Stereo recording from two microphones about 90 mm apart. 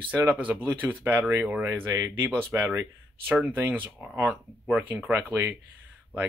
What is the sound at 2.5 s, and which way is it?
Speech, 20° right (ahead or behind).